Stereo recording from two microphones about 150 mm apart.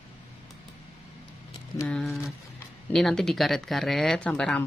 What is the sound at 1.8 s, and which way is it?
Speech, 5° left (ahead or behind).